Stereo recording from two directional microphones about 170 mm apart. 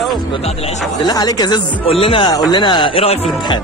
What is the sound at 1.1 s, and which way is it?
Speech, 20° left (ahead or behind).